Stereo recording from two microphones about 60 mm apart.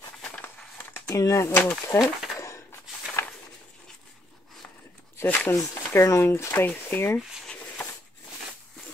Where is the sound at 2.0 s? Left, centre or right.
Left.